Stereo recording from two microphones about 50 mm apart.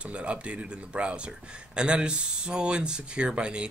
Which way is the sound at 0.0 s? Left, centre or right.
Right.